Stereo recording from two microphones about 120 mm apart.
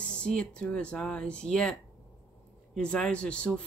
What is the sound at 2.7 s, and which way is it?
Speech, 10° left (ahead or behind).